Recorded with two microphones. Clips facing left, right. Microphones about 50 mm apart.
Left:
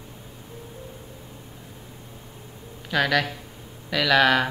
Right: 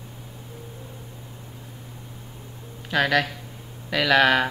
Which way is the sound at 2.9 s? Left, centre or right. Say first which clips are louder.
Right 1 dB; centre.